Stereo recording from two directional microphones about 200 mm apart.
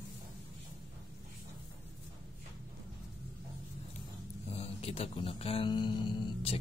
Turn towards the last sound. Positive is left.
turn(degrees=25)  # may be behind; listen again after turning